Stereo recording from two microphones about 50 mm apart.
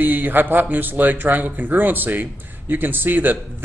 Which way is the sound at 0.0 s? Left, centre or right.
Right.